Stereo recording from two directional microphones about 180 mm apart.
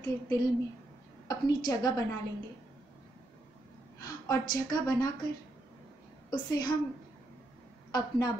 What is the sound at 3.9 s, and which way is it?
A woman's voice, 20° left (ahead or behind).